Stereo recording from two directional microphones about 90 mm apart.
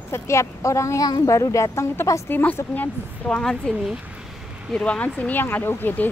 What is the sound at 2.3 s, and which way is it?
A woman's voice, 20° left (ahead or behind).